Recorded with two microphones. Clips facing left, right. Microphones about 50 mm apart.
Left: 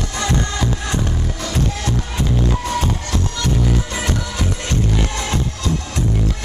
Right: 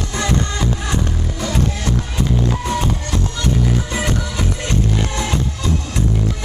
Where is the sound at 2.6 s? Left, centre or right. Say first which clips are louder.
Right 1 dB; centre.